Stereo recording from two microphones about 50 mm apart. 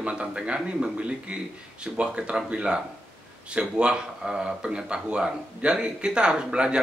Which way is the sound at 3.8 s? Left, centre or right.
Centre.